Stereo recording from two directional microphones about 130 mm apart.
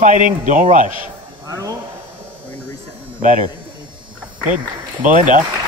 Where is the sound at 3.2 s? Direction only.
90° right.